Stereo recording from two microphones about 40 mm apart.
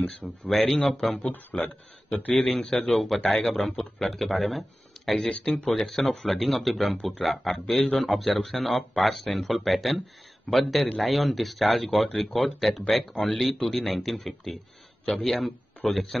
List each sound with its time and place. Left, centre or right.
0.2 s speech: centre
1.5 s a man's voice: left
2.3 s a man's voice: centre